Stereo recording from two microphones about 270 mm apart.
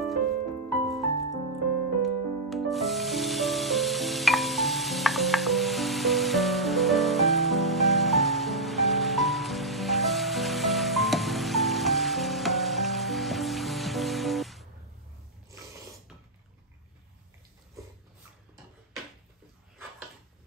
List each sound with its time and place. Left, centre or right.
0.0 s music: centre